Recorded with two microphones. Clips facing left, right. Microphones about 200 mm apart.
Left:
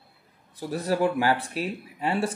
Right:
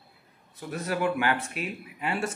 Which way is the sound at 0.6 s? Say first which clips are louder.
Left 4 dB; 35° left (ahead or behind).